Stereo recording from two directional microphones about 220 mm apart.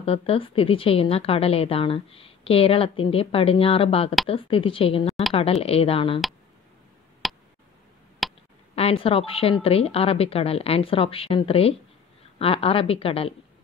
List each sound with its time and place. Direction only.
0.0 s a woman's voice: 25° left (ahead or behind)
7.2 s a sound: centre (ahead or behind)
8.7 s a woman's voice: 25° left (ahead or behind)